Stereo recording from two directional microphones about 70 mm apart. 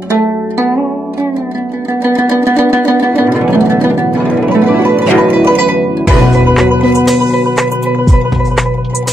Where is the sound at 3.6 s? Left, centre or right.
Right.